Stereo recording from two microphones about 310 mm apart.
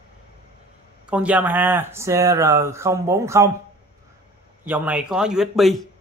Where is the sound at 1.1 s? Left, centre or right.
Centre.